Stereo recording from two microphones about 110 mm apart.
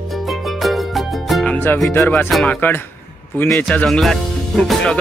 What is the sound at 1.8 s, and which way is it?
Music, 20° left (ahead or behind).